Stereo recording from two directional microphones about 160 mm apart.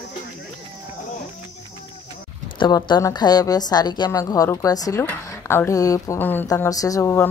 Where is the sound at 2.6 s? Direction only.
25° left (ahead or behind).